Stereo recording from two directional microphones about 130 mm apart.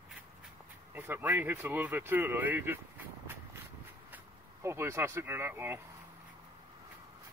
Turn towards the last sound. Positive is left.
turn(degrees=-15)  # may be behind; listen again after turning